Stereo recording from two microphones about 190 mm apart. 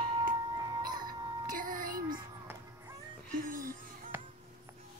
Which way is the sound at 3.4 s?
45° right (ahead or behind).